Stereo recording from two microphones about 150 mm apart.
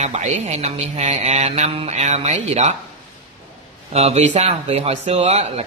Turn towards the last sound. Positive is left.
turn(degrees=-45)  # may be behind; listen again after turning